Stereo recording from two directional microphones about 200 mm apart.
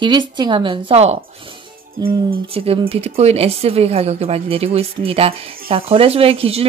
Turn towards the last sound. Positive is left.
turn(degrees=-30)  # may be behind; listen again after turning